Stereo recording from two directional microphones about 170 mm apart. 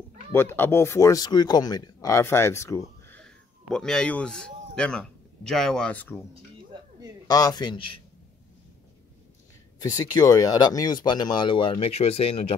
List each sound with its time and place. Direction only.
0.3 s speech: 15° left (ahead or behind)
7.2 s speech: 20° left (ahead or behind)
9.8 s speech: 20° left (ahead or behind)